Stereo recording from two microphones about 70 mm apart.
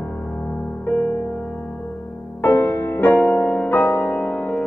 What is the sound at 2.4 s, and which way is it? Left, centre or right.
Music, left.